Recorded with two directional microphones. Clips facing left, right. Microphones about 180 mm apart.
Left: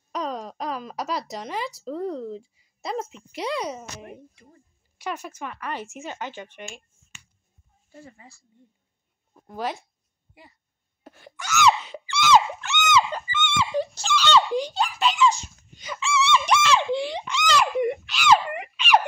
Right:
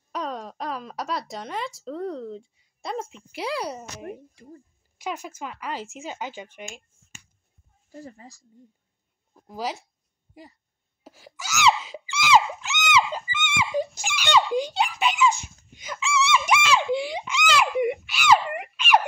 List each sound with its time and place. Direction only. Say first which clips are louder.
0.1 s wail: left 1 dB; centre (ahead or behind)
1.3 s a woman's voice: left 1 dB; centre (ahead or behind)
4.0 s speech: right 5 dB; 40° right (ahead or behind)
5.4 s speech: even; 10° right (ahead or behind)
7.9 s speech: right 5 dB; 40° right (ahead or behind)
9.3 s a sound: left 1 dB; 5° right (ahead or behind)
11.1 s speech: left 4 dB; 5° right (ahead or behind)
12.3 s a sound: left 1 dB; 10° right (ahead or behind)
14.8 s speech: left 2 dB; 10° right (ahead or behind)
15.4 s a sound: even; 10° right (ahead or behind)
16.3 s speech: left 1 dB; 5° right (ahead or behind)